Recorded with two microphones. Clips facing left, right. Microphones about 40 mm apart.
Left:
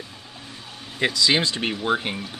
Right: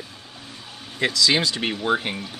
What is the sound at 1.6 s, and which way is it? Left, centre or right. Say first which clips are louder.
Speech: right 1 dB; centre.